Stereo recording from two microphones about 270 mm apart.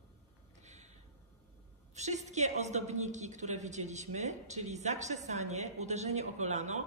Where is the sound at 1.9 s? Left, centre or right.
Right.